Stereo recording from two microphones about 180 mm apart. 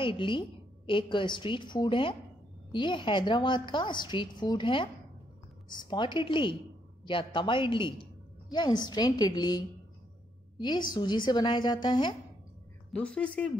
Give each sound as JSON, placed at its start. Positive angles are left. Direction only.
{"t": 0.0, "sound": "a woman's voice", "side_deg": 30}
{"t": 10.9, "sound": "a woman's voice", "side_deg": 25}
{"t": 12.9, "sound": "a woman's voice", "side_deg": 5}